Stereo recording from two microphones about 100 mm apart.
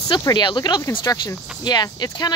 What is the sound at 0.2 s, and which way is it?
Speech, 45° left (ahead or behind).